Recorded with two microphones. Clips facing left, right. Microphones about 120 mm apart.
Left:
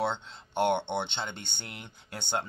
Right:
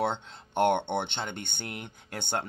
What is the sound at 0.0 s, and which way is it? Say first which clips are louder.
Speech: right 1 dB; 50° right (ahead or behind).